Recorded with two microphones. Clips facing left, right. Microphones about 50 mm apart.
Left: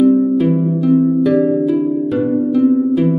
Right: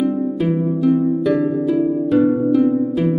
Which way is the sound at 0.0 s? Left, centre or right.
Centre.